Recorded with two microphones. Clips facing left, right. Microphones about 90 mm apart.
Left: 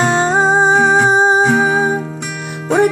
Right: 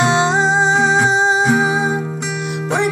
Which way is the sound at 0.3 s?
50° left (ahead or behind).